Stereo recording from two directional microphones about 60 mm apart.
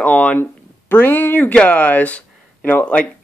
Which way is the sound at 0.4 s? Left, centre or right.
Left.